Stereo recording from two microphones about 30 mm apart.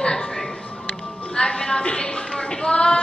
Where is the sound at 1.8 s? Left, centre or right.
Left.